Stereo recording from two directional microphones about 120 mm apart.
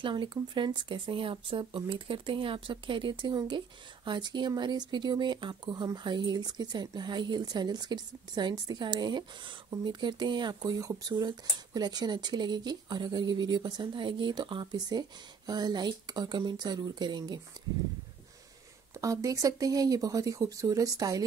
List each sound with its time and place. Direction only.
0.0 s speech: 45° right (ahead or behind)
18.9 s speech: 30° right (ahead or behind)